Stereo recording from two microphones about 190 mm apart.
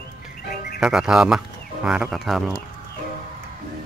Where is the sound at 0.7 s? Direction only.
5° right (ahead or behind).